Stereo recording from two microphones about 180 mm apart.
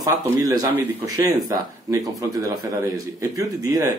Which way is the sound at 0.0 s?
20° right (ahead or behind).